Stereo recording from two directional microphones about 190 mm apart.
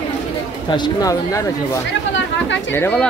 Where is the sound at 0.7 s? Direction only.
20° left (ahead or behind).